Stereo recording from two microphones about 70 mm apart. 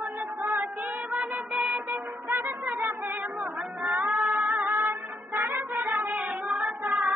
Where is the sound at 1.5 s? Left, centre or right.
Centre.